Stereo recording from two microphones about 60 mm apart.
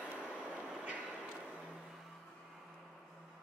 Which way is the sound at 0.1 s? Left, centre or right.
Right.